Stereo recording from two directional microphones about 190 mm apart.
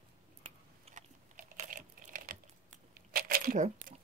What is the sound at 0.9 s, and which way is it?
Typing, 40° right (ahead or behind).